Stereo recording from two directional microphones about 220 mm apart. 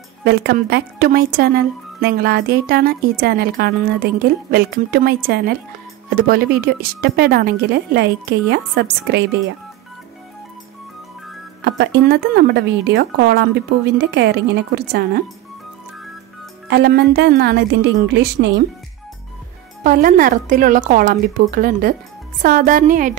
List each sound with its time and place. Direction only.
0.2 s speech: 45° right (ahead or behind)
11.6 s speech: 45° right (ahead or behind)
16.6 s speech: 45° right (ahead or behind)
19.8 s a woman's voice: 40° right (ahead or behind)